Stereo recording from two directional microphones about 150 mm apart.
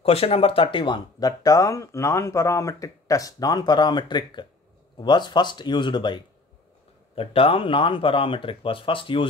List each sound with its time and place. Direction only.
0.0 s speech: 40° left (ahead or behind)